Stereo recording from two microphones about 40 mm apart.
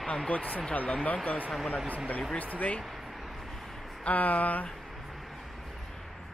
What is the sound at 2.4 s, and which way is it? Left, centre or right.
Speech, left.